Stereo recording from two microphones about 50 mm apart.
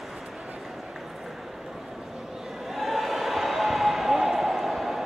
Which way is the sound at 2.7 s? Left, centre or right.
Centre.